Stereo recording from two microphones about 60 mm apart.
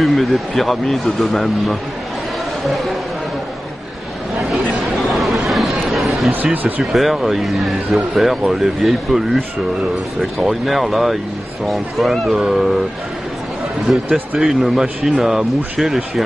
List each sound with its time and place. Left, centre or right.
0.0 s speech: centre
4.4 s chatter: centre
6.4 s speech: right
6.8 s speech: centre
14.4 s speech: centre